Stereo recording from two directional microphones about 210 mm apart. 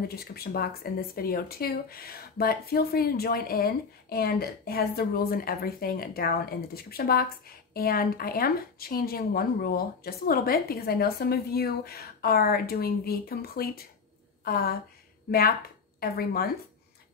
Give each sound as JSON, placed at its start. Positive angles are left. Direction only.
{"t": 0.1, "sound": "speech", "side_deg": 45}
{"t": 16.0, "sound": "speech", "side_deg": 45}